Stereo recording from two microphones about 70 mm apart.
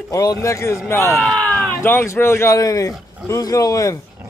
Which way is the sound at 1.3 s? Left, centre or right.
Centre.